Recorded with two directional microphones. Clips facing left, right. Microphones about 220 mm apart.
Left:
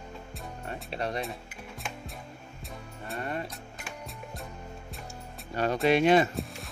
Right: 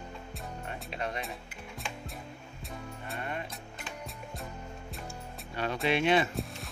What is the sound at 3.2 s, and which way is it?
Music, 40° left (ahead or behind).